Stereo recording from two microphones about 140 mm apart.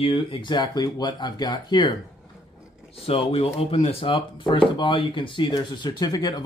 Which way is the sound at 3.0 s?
40° left (ahead or behind).